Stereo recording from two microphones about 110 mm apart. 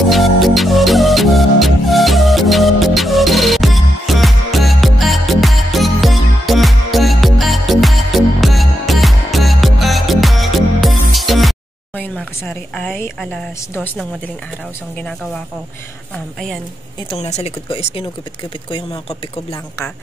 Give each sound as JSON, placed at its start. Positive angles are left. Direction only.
{"t": 0.1, "sound": "music", "side_deg": 0}
{"t": 12.4, "sound": "a woman's voice", "side_deg": 10}
{"t": 15.0, "sound": "a woman's voice", "side_deg": 10}
{"t": 17.2, "sound": "speech", "side_deg": 90}
{"t": 17.6, "sound": "speech", "side_deg": 60}